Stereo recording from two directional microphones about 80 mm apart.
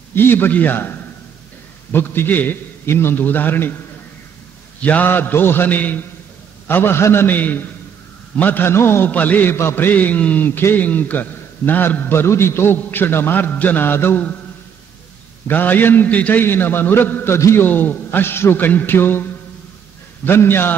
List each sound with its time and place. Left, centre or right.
0.1 s a man's voice: left
4.7 s a man's voice: centre
15.4 s a man's voice: left
17.4 s a man's voice: left
17.6 s a man's voice: left
20.2 s a man's voice: left